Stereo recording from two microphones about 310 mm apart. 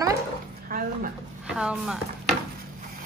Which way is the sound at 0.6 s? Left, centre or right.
Right.